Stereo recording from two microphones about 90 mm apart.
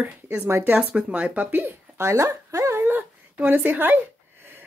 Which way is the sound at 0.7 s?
15° right (ahead or behind).